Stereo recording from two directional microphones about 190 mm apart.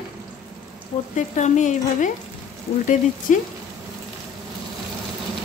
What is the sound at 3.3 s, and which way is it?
Speech, 40° left (ahead or behind).